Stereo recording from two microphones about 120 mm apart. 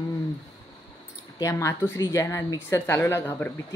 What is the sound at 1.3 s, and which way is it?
Speech, 25° left (ahead or behind).